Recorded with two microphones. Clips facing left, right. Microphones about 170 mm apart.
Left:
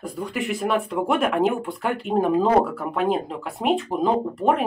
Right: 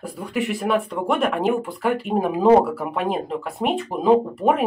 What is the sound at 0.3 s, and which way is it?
Speech, centre (ahead or behind).